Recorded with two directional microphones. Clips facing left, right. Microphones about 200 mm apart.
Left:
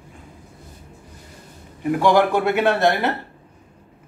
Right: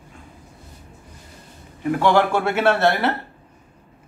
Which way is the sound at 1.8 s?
15° left (ahead or behind).